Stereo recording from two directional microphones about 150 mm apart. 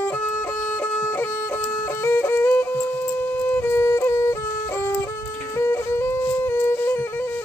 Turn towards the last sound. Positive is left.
turn(degrees=15)  # may be behind; listen again after turning